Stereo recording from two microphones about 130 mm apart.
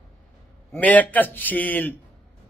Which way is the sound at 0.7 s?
10° left (ahead or behind).